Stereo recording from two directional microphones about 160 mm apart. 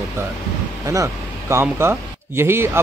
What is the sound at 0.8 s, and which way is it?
Speech, 20° right (ahead or behind).